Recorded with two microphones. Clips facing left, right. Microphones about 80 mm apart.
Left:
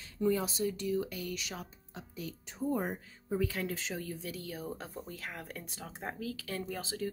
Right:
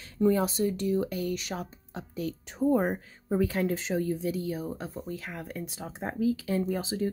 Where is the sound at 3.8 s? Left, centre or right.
Right.